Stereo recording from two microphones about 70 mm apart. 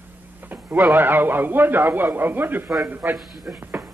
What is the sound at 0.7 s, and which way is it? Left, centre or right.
Speech, right.